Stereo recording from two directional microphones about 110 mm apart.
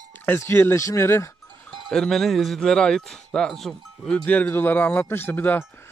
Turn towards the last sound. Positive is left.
turn(degrees=20)  # may be behind; listen again after turning